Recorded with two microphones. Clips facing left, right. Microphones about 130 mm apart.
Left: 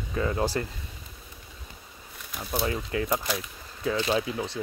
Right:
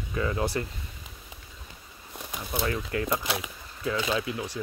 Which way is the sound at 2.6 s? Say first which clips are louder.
Left 1 dB; 25° left (ahead or behind).